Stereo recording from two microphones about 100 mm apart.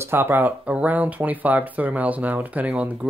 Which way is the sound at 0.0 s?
20° right (ahead or behind).